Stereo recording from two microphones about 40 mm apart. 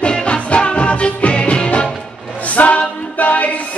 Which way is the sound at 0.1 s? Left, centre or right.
Left.